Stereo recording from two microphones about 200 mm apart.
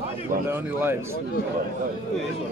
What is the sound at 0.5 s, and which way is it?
Speech, 10° right (ahead or behind).